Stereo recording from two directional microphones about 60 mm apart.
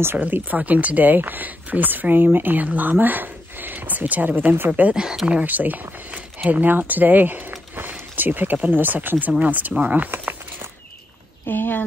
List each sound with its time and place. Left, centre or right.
0.2 s speech: right
4.9 s speech: centre
5.5 s speech: right
11.4 s speech: left